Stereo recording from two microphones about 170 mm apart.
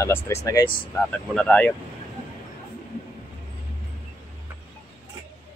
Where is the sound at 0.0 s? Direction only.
15° left (ahead or behind).